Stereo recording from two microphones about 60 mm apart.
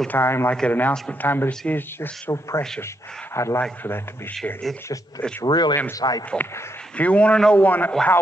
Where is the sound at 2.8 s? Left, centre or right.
Left.